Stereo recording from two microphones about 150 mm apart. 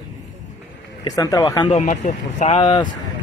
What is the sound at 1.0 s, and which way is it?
Speech, 25° left (ahead or behind).